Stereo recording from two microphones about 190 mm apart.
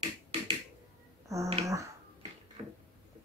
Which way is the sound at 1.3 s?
15° right (ahead or behind).